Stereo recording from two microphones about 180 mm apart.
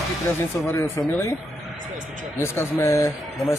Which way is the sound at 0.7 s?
15° left (ahead or behind).